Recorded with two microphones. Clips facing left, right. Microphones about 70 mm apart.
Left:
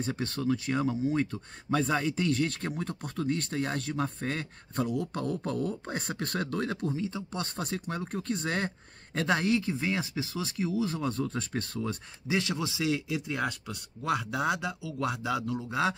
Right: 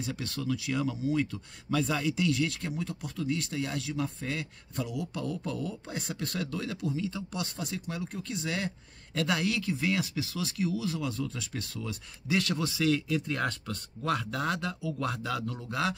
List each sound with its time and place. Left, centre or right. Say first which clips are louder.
0.0 s speech: left 4 dB; left
7.4 s speech: left 2 dB; left
9.1 s speech: left 3 dB; left
12.3 s speech: right 1 dB; left